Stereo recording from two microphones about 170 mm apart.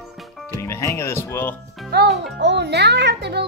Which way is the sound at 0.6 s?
15° left (ahead or behind).